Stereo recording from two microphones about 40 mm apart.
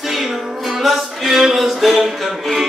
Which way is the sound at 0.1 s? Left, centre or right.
Centre.